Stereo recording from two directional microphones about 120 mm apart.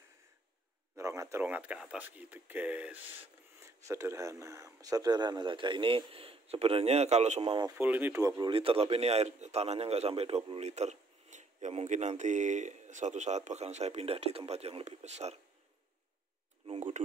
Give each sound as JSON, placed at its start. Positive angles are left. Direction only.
{"t": 0.9, "sound": "speech", "side_deg": -25}
{"t": 7.7, "sound": "speech", "side_deg": -15}
{"t": 8.4, "sound": "a man's voice", "side_deg": -45}